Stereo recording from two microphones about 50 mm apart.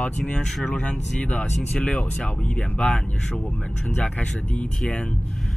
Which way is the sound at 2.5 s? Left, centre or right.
Left.